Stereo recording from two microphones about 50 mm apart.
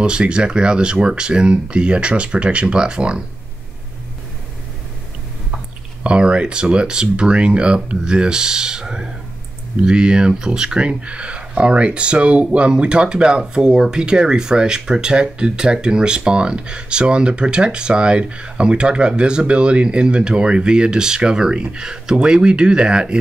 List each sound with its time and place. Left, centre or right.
0.0 s speech: centre
6.0 s speech: right